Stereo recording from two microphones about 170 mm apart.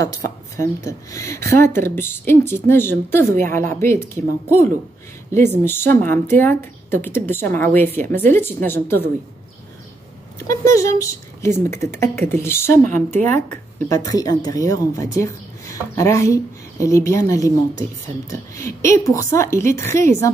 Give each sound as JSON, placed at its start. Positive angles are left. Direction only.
{"t": 0.0, "sound": "speech", "side_deg": 20}
{"t": 5.3, "sound": "speech", "side_deg": 15}
{"t": 10.5, "sound": "speech", "side_deg": 20}